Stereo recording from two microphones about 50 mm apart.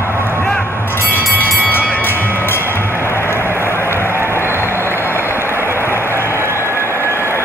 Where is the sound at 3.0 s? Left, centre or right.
Left.